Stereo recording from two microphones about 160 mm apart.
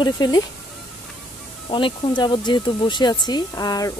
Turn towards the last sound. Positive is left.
turn(degrees=25)  # may be behind; listen again after turning